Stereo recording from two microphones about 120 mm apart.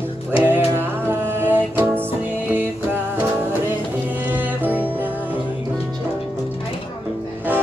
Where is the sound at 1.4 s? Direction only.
20° right (ahead or behind).